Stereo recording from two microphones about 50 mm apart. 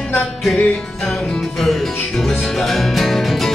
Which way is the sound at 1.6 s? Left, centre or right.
Centre.